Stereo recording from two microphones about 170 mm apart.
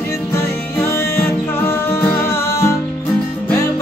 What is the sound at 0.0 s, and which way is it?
Music, 15° left (ahead or behind).